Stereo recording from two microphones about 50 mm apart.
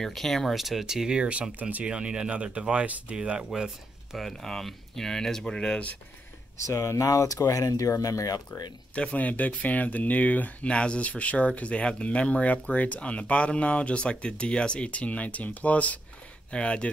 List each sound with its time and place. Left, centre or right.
0.0 s speech: centre
0.6 s speech: centre; by 1.9 s right
1.9 s speech: centre
3.5 s speech: centre
4.2 s speech: centre
6.6 s speech: left
8.5 s speech: left